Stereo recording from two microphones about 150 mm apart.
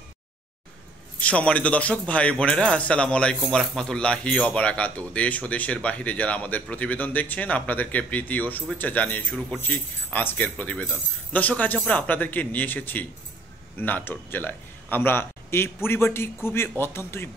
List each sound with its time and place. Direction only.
1.2 s speech: 10° left (ahead or behind)